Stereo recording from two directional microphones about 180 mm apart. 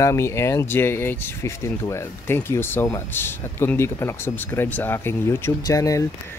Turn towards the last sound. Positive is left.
turn(degrees=20)  # may be behind; listen again after turning